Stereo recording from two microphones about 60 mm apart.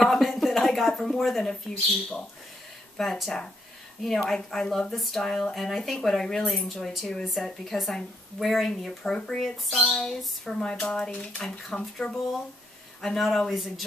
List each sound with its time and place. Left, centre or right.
0.0 s a sound: centre
1.0 s speech: centre
3.0 s speech: centre
13.0 s speech: centre